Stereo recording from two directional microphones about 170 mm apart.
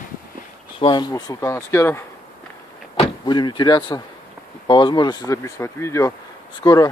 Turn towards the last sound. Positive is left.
turn(degrees=20)  # may be behind; listen again after turning